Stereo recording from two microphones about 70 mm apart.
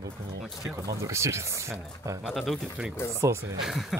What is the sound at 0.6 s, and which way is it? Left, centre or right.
Speech, right.